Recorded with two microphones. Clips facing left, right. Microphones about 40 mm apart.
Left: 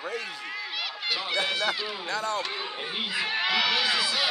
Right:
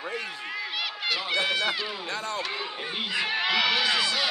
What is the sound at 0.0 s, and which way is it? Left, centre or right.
Speech, centre.